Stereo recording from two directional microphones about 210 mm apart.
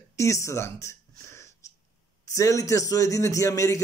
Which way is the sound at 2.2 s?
15° left (ahead or behind).